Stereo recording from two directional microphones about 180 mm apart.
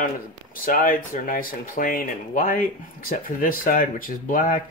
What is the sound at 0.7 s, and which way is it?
Speech, 50° left (ahead or behind).